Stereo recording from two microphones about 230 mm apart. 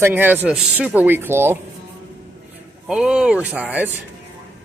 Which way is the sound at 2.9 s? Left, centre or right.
Centre.